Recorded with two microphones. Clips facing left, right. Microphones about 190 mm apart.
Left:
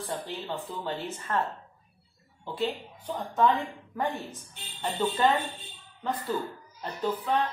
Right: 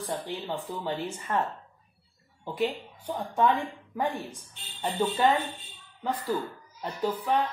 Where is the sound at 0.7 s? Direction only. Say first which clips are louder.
Right 2 dB; 15° right (ahead or behind).